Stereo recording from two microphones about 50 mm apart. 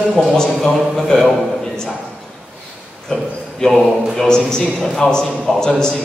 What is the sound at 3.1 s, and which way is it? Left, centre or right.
A man's voice, centre.